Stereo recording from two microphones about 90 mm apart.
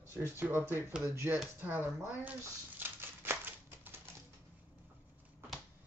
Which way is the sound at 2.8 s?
25° right (ahead or behind).